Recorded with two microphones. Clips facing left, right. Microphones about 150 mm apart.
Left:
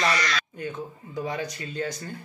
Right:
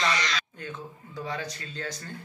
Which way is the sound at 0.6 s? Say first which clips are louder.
Left 5 dB; 10° left (ahead or behind).